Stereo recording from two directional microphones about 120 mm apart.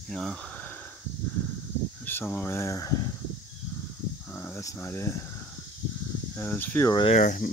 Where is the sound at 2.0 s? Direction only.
15° left (ahead or behind).